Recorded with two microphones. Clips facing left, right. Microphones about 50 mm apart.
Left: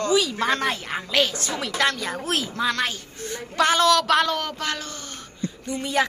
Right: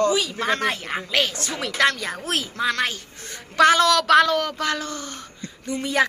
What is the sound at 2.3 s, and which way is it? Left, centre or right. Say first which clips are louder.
Speech: right 1 dB; right.